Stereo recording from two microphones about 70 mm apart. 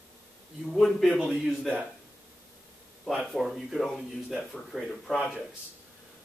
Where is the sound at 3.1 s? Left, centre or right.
Centre.